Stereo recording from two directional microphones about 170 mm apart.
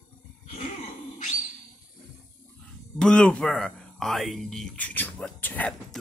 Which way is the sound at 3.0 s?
5° left (ahead or behind).